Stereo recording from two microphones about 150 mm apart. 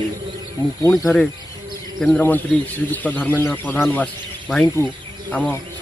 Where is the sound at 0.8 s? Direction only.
20° left (ahead or behind).